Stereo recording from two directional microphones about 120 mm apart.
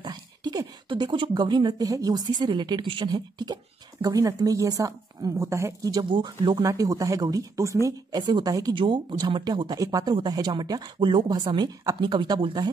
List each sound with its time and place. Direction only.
0.0 s speech: 35° right (ahead or behind)
6.0 s speech: 40° right (ahead or behind)